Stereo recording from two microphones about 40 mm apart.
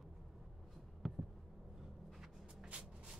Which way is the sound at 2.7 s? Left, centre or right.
Right.